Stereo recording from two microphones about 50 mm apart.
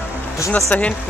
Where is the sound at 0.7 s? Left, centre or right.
Left.